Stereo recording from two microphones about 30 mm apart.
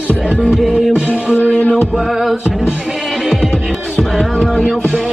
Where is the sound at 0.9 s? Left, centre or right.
Right.